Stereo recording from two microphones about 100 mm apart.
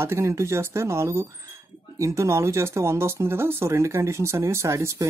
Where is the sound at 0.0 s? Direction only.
25° right (ahead or behind).